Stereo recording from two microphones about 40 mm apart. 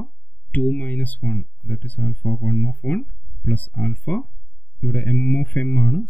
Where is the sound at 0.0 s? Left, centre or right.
Left.